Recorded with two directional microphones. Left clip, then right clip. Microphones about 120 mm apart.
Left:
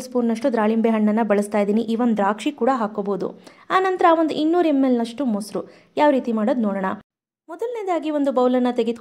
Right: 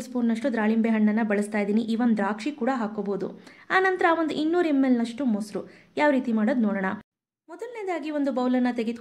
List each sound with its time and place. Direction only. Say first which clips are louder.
0.3 s a woman's voice: left 5 dB; 40° left (ahead or behind)